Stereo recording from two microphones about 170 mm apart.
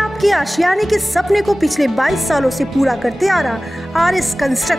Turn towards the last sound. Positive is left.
turn(degrees=0)  # may be behind; listen again after turning